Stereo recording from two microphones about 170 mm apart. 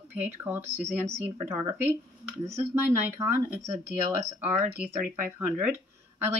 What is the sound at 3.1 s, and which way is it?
Speech, 15° right (ahead or behind).